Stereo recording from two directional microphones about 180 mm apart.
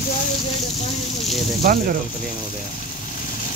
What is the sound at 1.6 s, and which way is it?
Speech, 55° right (ahead or behind).